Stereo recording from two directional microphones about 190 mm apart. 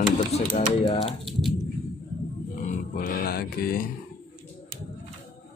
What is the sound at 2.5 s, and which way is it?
Grunt, 40° left (ahead or behind).